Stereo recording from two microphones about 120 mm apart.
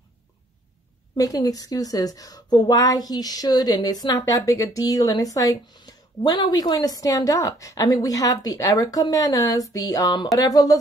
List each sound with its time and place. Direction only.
1.1 s speech: 30° left (ahead or behind)